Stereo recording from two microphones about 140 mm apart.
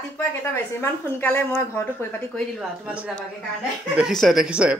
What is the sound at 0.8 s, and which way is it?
Speech, 15° left (ahead or behind).